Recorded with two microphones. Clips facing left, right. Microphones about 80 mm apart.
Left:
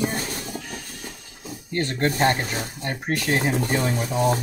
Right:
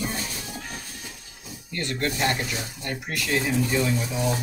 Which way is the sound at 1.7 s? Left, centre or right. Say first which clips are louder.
Left 5 dB; left.